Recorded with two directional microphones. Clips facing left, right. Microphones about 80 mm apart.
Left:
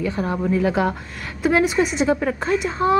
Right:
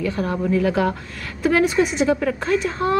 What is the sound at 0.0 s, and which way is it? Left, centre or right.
A woman's voice, centre.